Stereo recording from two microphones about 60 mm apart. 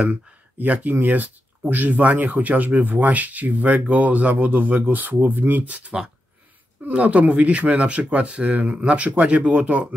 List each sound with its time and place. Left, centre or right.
0.1 s speech: right